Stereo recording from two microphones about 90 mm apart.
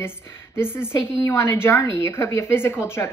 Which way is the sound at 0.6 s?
25° left (ahead or behind).